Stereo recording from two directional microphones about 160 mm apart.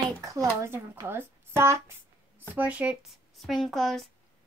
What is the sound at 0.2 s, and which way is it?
A woman's voice, 20° right (ahead or behind).